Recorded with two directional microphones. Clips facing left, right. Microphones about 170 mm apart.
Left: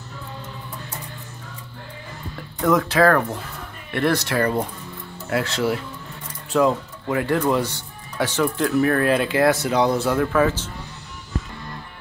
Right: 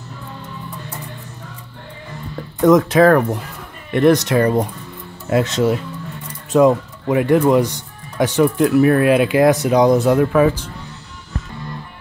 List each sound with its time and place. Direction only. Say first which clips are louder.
2.6 s speech: right 6 dB; 20° right (ahead or behind)